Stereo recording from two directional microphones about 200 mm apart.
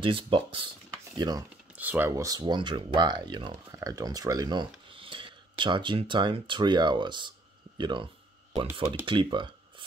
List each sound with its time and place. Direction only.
0.0 s speech: 25° right (ahead or behind)